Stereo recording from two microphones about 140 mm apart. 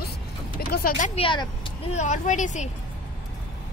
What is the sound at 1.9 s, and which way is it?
Speech, 60° left (ahead or behind).